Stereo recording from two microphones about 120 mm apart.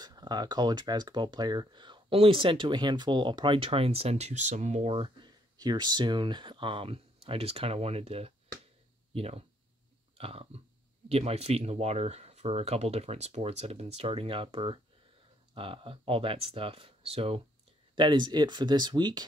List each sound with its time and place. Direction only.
0.0 s speech: 35° right (ahead or behind); by 4.9 s 80° right
4.9 s speech: 45° right (ahead or behind)
5.6 s speech: 35° right (ahead or behind); by 9.4 s 55° right (ahead or behind)
10.1 s burping: 55° right (ahead or behind)
11.1 s speech: 60° right (ahead or behind)
17.9 s speech: 40° right (ahead or behind)